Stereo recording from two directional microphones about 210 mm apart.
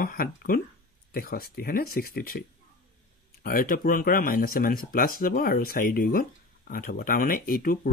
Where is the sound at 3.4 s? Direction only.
40° left (ahead or behind).